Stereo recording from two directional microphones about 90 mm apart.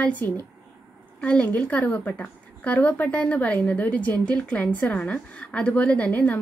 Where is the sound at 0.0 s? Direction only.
15° left (ahead or behind).